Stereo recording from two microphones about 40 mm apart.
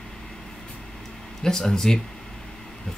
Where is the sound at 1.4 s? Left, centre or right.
Centre.